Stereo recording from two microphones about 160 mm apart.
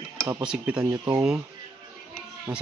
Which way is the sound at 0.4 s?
5° right (ahead or behind).